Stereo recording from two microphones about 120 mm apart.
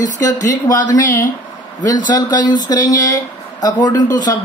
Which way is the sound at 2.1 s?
35° left (ahead or behind).